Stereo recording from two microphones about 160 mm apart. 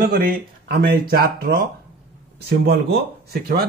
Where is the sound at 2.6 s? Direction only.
80° right.